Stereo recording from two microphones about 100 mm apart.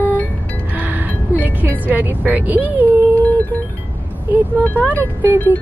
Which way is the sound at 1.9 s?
20° right (ahead or behind).